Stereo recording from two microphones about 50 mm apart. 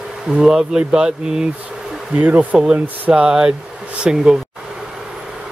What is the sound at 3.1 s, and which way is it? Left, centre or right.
Speech, centre.